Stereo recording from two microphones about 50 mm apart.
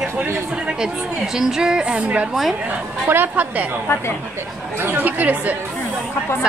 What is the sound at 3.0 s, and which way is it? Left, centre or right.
Speech, right.